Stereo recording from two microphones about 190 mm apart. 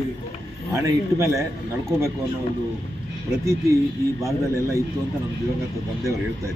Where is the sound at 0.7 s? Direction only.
15° right (ahead or behind).